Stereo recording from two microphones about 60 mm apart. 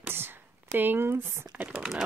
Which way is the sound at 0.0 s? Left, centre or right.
Right.